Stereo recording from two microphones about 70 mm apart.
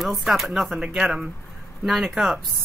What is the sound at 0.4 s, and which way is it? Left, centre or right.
Speech, centre.